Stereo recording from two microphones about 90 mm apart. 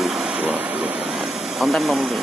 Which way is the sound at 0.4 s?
15° right (ahead or behind).